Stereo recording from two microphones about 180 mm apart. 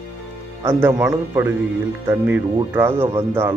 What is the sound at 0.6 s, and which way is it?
Speech, 15° right (ahead or behind).